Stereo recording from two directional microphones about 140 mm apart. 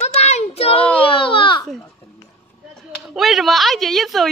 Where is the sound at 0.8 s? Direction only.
10° left (ahead or behind).